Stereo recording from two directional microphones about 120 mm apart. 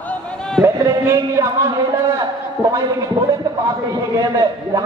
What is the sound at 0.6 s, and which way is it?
A man's voice, 25° right (ahead or behind).